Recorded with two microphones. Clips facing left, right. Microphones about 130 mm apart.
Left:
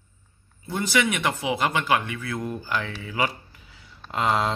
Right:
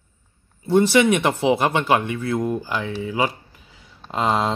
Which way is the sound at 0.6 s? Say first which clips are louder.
Right 9 dB; 25° right (ahead or behind).